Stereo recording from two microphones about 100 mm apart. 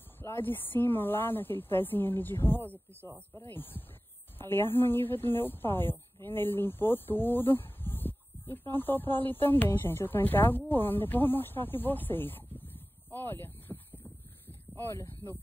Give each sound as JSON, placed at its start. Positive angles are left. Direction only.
{"t": 0.2, "sound": "speech", "side_deg": 20}
{"t": 14.8, "sound": "speech", "side_deg": 25}